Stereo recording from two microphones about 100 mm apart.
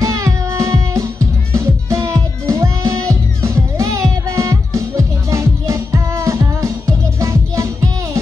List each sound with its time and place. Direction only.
0.0 s music: 30° right (ahead or behind)